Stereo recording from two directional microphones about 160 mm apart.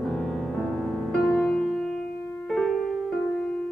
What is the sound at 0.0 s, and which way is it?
Music, 5° left (ahead or behind).